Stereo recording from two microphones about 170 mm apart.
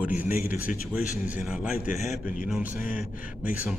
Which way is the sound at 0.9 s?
10° right (ahead or behind).